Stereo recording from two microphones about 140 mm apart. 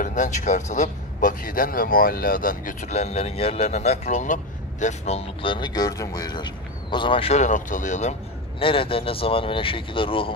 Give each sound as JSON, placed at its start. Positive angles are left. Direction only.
{"t": 0.0, "sound": "a man's voice", "side_deg": 65}
{"t": 7.3, "sound": "speech", "side_deg": 65}
{"t": 8.5, "sound": "speech", "side_deg": 40}